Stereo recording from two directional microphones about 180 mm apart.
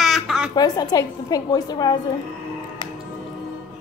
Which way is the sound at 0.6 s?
20° left (ahead or behind).